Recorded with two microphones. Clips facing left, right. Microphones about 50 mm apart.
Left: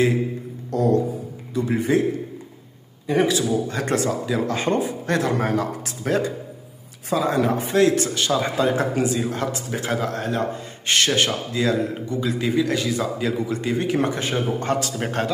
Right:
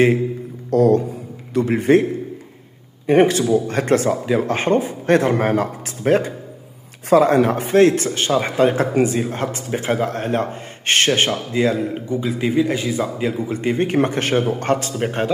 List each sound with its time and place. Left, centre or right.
0.7 s music: right
1.5 s speech: right
3.1 s speech: right
7.1 s speech: right
11.1 s a man's voice: right
13.6 s speech: right
15.0 s speech: centre